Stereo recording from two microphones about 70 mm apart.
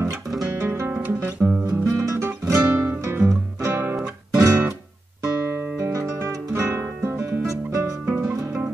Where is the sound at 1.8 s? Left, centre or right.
Right.